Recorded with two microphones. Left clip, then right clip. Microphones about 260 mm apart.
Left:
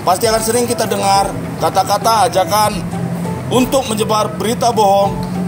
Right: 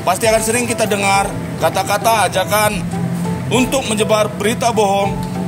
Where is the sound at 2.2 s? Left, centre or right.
Right.